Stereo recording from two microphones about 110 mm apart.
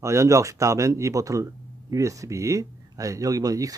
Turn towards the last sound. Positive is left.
turn(degrees=-30)  # may be behind; listen again after turning